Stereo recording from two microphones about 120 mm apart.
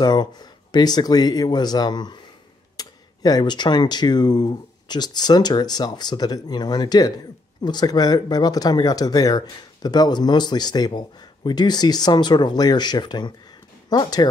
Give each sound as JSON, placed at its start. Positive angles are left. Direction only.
{"t": 0.0, "sound": "speech", "side_deg": 35}